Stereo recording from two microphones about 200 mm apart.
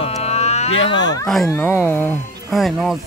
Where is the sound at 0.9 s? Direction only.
20° left (ahead or behind).